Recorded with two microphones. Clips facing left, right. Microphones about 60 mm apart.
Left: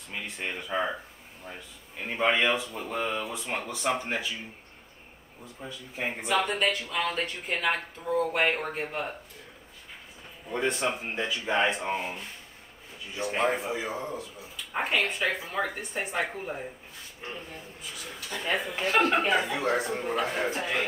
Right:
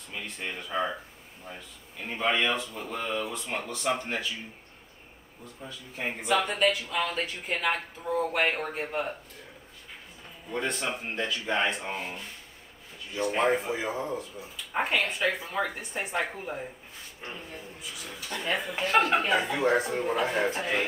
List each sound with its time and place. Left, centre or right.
0.1 s speech: left
5.9 s speech: centre
10.5 s speech: centre
13.2 s speech: centre
14.7 s speech: centre